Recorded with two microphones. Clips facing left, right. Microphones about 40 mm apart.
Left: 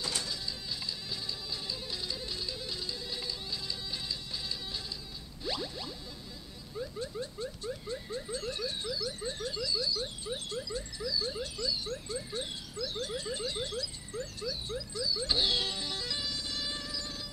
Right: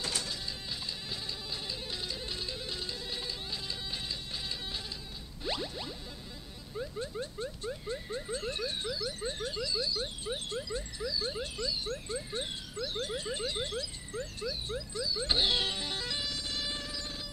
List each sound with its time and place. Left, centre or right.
0.2 s printer: right
5.4 s whoosh: right
6.8 s a sound: right
15.0 s music: right